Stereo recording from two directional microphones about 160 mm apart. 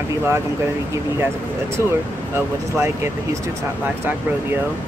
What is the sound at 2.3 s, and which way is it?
Speech, 15° right (ahead or behind).